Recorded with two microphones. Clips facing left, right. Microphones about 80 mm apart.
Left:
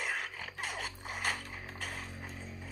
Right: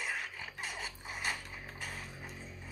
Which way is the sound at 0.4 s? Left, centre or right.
Left.